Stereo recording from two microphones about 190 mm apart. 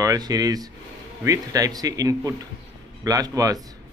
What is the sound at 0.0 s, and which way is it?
A man's voice, 20° right (ahead or behind).